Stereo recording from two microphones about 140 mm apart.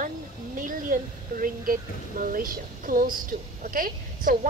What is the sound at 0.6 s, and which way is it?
A woman's voice, 75° right (ahead or behind).